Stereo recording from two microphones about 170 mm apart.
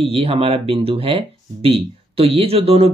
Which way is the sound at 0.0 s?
35° right (ahead or behind).